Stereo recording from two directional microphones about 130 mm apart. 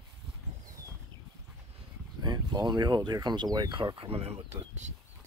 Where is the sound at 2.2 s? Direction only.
35° right (ahead or behind); by 4.4 s 50° right (ahead or behind).